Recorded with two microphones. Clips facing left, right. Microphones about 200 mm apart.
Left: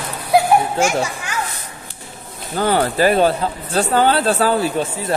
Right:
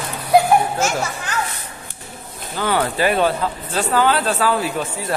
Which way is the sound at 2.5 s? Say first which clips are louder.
Left 3 dB; 35° left (ahead or behind).